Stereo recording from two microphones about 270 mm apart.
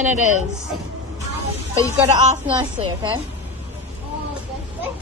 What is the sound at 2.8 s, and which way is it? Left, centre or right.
Speech, right.